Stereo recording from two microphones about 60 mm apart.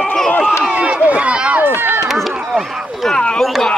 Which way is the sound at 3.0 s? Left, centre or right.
Centre.